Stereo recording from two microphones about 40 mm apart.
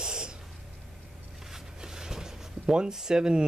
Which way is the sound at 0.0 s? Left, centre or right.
Centre.